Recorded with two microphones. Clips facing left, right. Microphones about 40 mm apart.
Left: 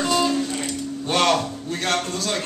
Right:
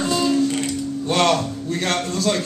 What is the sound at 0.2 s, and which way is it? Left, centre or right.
Music, left.